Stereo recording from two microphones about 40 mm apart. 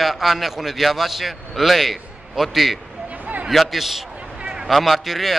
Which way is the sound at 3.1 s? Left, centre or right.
Right.